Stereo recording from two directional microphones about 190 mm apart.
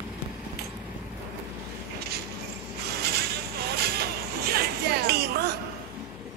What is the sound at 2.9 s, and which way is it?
Vehicle, 55° right (ahead or behind).